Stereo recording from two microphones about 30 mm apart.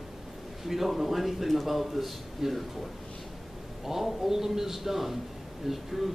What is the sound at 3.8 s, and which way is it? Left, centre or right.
A man's voice, centre.